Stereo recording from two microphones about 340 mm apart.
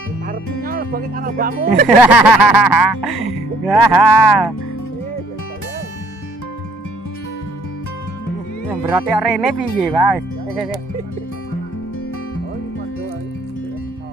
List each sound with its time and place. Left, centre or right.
0.3 s speech: right
1.9 s speech: centre
8.6 s speech: centre